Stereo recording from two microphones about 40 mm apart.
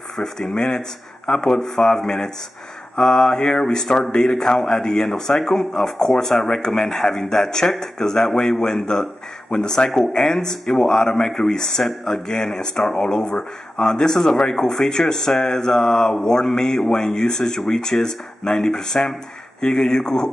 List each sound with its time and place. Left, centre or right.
0.1 s speech: centre